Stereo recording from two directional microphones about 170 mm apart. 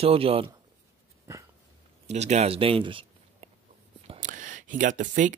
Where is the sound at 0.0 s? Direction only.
35° right (ahead or behind).